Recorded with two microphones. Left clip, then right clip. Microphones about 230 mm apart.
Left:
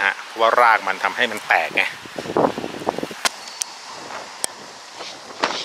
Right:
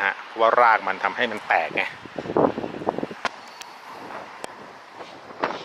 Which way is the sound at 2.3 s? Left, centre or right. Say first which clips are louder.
Left 2 dB; right.